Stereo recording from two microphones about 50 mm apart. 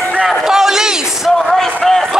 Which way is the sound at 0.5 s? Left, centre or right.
Centre.